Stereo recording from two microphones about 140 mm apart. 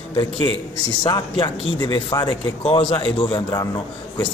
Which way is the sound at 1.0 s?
35° left (ahead or behind).